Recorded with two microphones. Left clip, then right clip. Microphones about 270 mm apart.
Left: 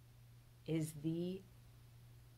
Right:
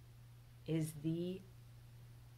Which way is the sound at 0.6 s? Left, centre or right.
Centre.